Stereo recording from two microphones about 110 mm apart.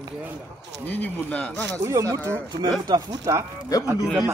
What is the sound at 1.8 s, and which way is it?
Speech, 30° right (ahead or behind).